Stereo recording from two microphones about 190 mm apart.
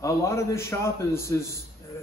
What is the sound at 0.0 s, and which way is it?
A man's voice, 15° left (ahead or behind).